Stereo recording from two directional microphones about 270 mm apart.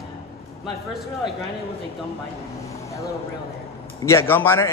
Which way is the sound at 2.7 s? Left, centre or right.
Centre.